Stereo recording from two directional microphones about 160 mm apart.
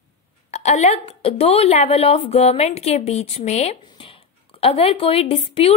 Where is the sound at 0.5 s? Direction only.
45° left (ahead or behind).